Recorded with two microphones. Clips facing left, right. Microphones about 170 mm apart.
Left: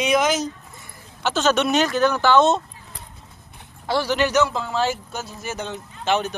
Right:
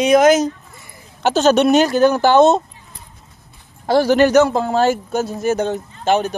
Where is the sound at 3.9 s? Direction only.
45° right (ahead or behind).